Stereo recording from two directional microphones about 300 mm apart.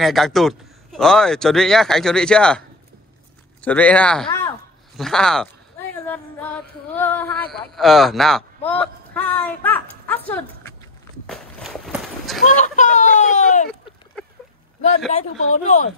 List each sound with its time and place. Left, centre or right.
0.0 s speech: centre
3.6 s speech: centre
6.0 s a sound: centre
7.7 s speech: centre
11.2 s walk: centre
12.4 s speech: left
14.2 s a sound: centre
15.1 s speech: left